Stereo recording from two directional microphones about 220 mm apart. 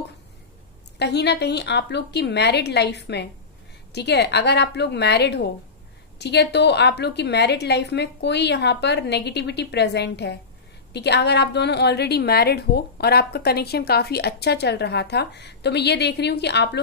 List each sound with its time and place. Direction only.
0.9 s a woman's voice: 50° left (ahead or behind)